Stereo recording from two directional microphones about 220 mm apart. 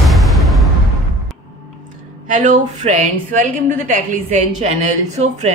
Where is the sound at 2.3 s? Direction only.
35° right (ahead or behind).